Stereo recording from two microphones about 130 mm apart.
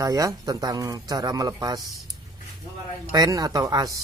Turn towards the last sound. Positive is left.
turn(degrees=-30)  # may be behind; listen again after turning